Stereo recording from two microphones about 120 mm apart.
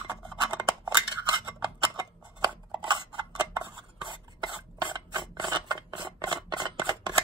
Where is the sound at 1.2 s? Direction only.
35° right (ahead or behind).